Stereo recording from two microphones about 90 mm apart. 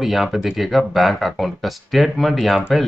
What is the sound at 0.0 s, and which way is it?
Speech, centre (ahead or behind).